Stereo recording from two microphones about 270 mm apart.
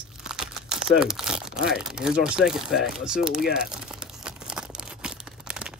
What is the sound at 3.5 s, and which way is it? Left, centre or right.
Crumpling, centre.